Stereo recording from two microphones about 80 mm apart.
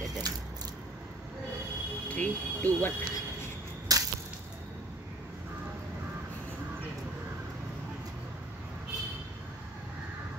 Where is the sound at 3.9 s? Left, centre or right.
Right.